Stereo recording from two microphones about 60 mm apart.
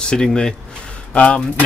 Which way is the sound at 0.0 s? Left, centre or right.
Centre.